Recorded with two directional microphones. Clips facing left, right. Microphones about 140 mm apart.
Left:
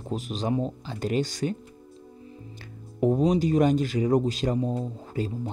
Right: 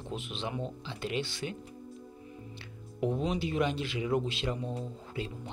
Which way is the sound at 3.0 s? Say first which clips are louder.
Left 9 dB; 40° left (ahead or behind).